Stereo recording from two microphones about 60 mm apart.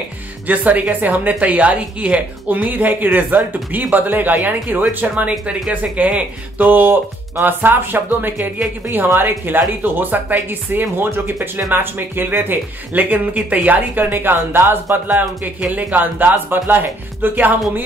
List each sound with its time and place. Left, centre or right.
0.5 s speech: right